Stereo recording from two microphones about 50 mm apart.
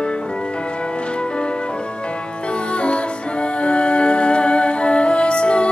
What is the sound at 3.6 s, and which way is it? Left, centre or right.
Music, left.